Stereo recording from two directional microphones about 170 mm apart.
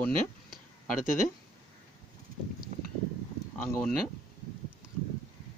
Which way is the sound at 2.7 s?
45° right (ahead or behind).